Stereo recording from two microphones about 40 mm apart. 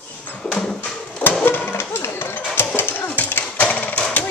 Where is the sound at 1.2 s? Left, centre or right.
Left.